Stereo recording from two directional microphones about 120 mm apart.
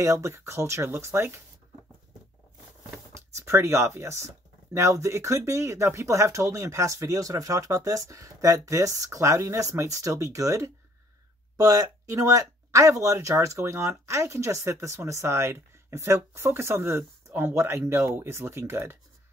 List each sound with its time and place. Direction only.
0.0 s speech: 25° right (ahead or behind)
3.3 s speech: 25° right (ahead or behind)